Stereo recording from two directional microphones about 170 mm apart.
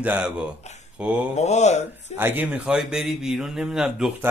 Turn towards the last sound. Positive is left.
turn(degrees=-5)  # may be behind; listen again after turning